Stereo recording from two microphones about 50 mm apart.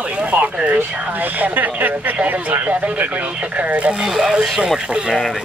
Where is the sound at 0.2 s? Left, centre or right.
Right.